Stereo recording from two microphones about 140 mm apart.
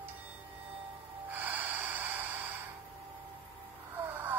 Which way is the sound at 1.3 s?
10° right (ahead or behind).